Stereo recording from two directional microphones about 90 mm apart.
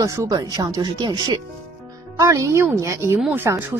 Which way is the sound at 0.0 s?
35° right (ahead or behind).